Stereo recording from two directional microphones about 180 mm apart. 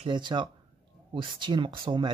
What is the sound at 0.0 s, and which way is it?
Speech, 25° right (ahead or behind).